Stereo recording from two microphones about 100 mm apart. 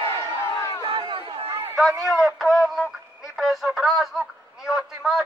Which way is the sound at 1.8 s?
Centre (ahead or behind).